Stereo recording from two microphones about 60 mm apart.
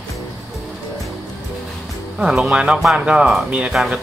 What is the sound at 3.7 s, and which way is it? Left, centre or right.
Speech, centre.